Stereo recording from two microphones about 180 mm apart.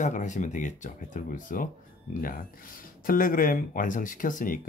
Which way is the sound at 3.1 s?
50° left (ahead or behind).